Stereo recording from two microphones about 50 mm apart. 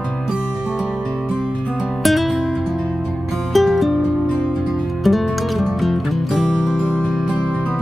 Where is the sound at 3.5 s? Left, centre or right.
Centre.